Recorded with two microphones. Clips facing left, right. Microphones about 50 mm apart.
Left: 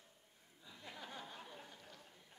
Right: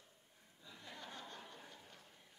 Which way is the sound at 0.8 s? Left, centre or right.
Centre.